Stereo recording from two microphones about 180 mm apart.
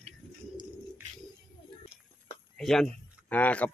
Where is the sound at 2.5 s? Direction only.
5° left (ahead or behind).